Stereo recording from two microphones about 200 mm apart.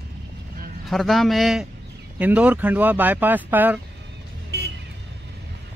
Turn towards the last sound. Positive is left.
turn(degrees=-55)  # may be behind; listen again after turning